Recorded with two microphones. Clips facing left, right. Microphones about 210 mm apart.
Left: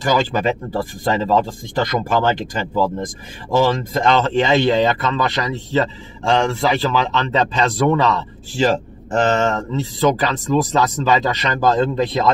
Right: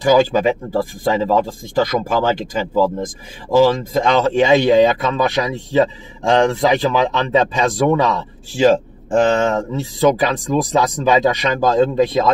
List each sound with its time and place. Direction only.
0.0 s speech: 10° right (ahead or behind)